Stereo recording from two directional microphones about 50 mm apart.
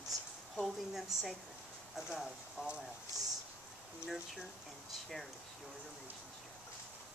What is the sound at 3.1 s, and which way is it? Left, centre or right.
Speech, left.